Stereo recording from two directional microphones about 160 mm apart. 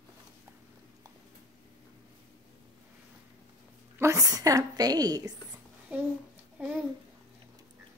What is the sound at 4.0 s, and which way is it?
A woman's voice, 20° right (ahead or behind).